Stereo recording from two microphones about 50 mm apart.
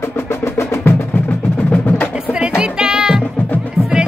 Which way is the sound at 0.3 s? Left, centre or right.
Left.